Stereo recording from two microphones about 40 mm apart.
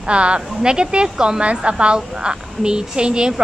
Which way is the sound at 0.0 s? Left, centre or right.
Right.